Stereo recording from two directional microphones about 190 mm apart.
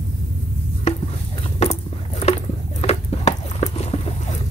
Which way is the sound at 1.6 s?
35° left (ahead or behind).